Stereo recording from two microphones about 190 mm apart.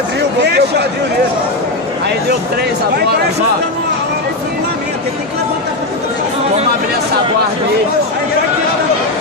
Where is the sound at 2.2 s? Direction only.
60° right (ahead or behind).